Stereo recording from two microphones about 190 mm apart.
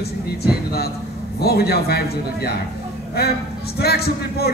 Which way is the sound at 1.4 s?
55° left (ahead or behind).